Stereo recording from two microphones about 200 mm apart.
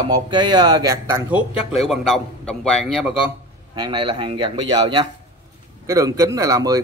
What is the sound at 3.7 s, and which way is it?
A man's voice, 20° right (ahead or behind).